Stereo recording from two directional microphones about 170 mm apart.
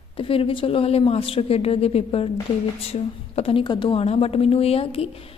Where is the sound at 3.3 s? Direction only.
35° left (ahead or behind).